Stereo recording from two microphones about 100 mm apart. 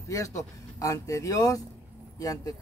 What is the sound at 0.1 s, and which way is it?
A man's voice, 35° left (ahead or behind).